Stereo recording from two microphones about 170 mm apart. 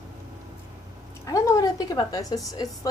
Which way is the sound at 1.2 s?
20° left (ahead or behind).